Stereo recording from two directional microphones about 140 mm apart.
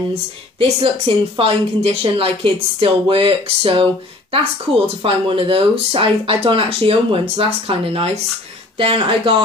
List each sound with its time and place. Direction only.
0.6 s speech: 35° right (ahead or behind)
5.0 s speech: 40° right (ahead or behind)